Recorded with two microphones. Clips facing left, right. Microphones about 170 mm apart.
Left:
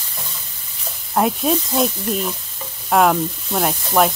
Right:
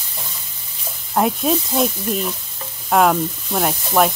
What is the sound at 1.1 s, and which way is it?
Speech, centre (ahead or behind).